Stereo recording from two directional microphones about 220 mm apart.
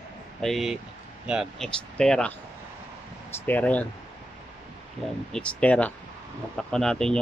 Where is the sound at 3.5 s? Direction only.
5° left (ahead or behind).